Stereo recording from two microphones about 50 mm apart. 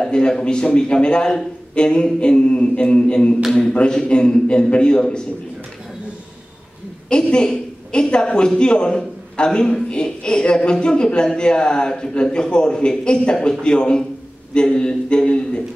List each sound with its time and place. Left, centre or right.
0.0 s a woman's voice: centre
7.1 s a woman's voice: centre